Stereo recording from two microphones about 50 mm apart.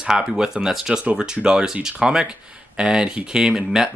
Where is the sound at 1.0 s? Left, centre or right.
Right.